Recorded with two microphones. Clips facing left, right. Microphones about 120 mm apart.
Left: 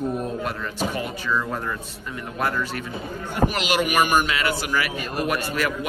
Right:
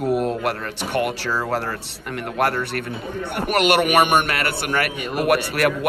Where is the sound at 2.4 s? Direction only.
70° right (ahead or behind).